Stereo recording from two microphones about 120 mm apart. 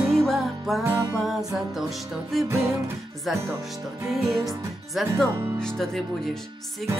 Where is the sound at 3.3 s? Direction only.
Centre (ahead or behind).